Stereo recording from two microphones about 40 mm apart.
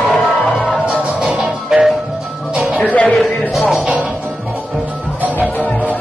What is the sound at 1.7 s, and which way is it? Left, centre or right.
Music, centre.